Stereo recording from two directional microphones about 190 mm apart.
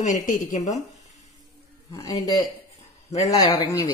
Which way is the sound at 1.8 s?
20° left (ahead or behind).